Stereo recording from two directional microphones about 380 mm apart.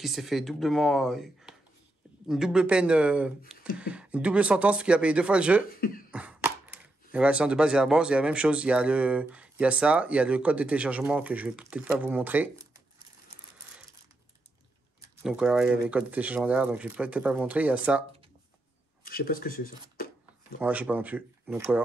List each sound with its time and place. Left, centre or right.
0.0 s speech: centre
5.7 s speech: left
6.1 s speech: centre
15.0 s speech: centre
19.0 s speech: left
20.6 s speech: centre